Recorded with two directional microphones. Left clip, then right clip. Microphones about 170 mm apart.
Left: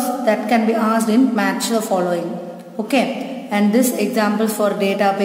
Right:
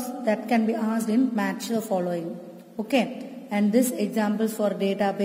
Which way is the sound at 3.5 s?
35° right (ahead or behind).